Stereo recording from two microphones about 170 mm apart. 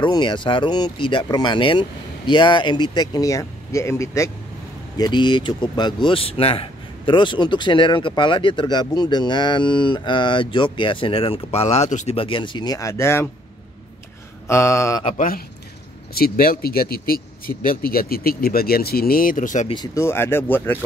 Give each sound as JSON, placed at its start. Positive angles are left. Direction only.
{"t": 0.0, "sound": "speech", "side_deg": 25}
{"t": 12.2, "sound": "speech", "side_deg": 30}
{"t": 14.5, "sound": "speech", "side_deg": 15}
{"t": 15.1, "sound": "speech", "side_deg": 55}
{"t": 19.7, "sound": "speech", "side_deg": 20}